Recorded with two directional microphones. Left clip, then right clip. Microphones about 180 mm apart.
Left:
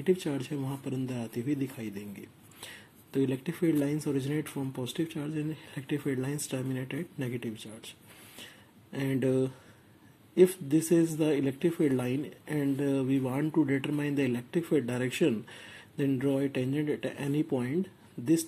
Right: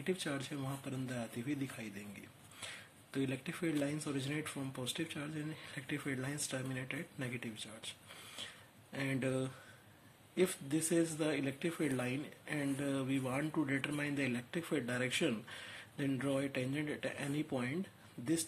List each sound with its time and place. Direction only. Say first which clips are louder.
0.0 s speech: left 10 dB; 15° left (ahead or behind)
8.9 s speech: left 9 dB; 15° left (ahead or behind)